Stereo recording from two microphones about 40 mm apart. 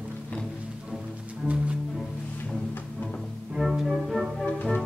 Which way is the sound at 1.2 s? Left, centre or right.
Right.